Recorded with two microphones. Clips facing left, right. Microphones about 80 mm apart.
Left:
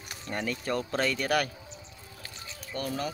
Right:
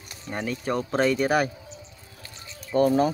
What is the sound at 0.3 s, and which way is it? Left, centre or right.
Speech, centre.